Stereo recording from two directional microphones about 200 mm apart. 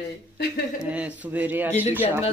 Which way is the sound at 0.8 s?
5° right (ahead or behind).